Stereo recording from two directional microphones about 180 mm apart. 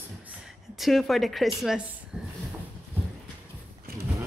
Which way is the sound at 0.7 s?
Centre (ahead or behind).